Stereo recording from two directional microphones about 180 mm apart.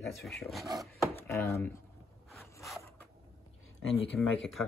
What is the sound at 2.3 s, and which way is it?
Zipper, centre (ahead or behind).